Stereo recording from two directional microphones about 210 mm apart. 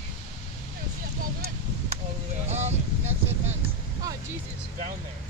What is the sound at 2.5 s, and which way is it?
Vehicle, 30° right (ahead or behind).